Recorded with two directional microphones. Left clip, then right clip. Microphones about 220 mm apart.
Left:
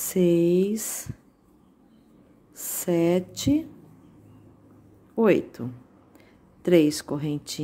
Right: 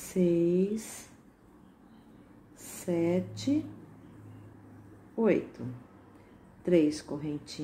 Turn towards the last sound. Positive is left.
turn(degrees=40)  # may be behind; listen again after turning